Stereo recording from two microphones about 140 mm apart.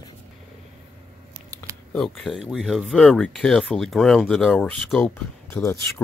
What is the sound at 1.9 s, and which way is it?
Speech, 5° left (ahead or behind).